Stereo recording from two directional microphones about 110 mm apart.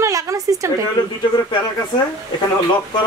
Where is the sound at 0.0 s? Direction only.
30° right (ahead or behind).